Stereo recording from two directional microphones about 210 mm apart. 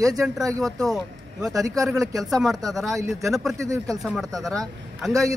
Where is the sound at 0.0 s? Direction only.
15° right (ahead or behind).